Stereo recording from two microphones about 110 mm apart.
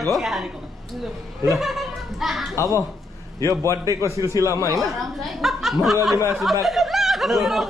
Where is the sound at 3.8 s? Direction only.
30° right (ahead or behind).